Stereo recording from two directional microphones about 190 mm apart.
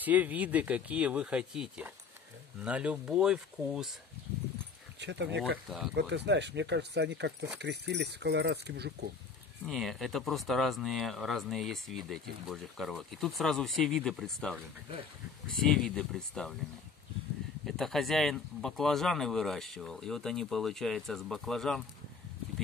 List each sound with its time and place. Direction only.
0.0 s speech: 10° right (ahead or behind)
5.0 s speech: 65° right (ahead or behind)
5.7 s speech: centre (ahead or behind)
5.9 s speech: 65° right (ahead or behind)
9.7 s speech: centre (ahead or behind)
17.6 s speech: centre (ahead or behind)